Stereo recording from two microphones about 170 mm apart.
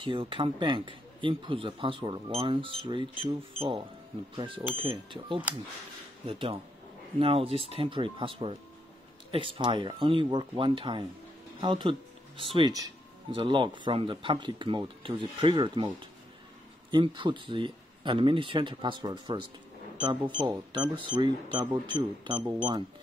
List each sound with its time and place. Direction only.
0.0 s speech: 30° right (ahead or behind)
4.4 s speech: 30° right (ahead or behind)